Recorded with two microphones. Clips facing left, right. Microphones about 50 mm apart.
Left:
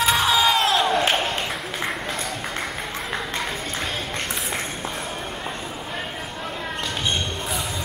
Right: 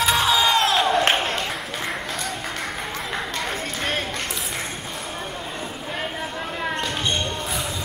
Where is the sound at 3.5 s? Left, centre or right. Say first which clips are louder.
Right 2 dB; right.